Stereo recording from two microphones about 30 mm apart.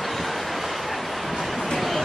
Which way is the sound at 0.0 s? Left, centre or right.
Centre.